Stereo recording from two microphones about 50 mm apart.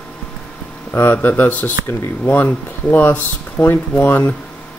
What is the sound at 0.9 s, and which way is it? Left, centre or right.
Speech, left.